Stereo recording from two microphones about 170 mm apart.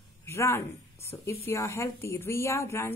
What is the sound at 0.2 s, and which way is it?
A woman's voice, 15° left (ahead or behind).